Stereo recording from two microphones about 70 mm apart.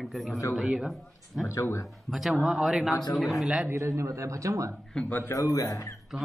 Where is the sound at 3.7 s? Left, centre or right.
Right.